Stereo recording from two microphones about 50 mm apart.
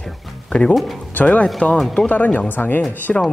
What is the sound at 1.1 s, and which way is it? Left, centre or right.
Speech, left.